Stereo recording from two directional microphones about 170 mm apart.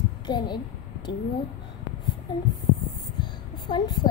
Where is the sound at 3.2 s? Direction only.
25° left (ahead or behind).